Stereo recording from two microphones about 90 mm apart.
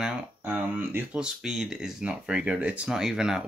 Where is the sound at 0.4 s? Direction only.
20° right (ahead or behind).